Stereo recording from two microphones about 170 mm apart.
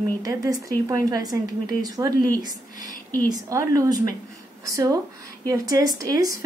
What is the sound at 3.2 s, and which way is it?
A woman's voice, 20° right (ahead or behind).